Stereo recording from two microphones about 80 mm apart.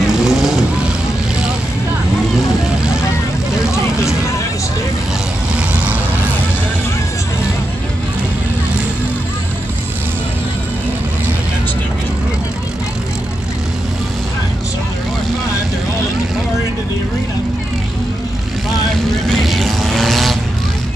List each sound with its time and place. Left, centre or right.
0.0 s vehicle: centre
5.6 s vehicle: centre
19.2 s vehicle: centre